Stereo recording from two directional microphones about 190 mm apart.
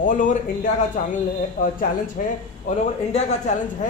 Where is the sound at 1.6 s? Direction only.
40° left (ahead or behind).